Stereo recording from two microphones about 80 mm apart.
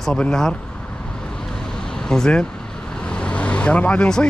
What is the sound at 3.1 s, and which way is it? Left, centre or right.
Vehicle, centre.